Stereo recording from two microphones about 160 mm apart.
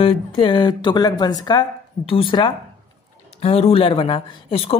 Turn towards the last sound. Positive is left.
turn(degrees=35)  # may be behind; listen again after turning